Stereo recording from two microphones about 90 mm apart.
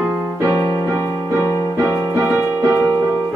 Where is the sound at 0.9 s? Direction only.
35° left (ahead or behind).